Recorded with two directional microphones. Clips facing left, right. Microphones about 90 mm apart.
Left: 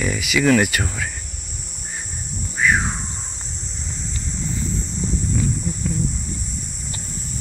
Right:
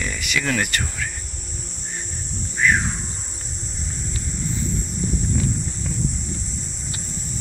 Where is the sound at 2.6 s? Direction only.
5° left (ahead or behind).